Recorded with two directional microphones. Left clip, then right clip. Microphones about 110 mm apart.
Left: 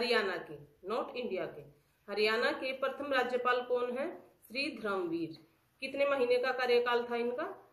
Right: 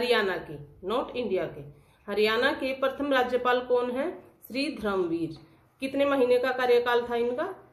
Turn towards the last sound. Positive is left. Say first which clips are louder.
# right 7 dB
turn(degrees=-15)  # may be behind; listen again after turning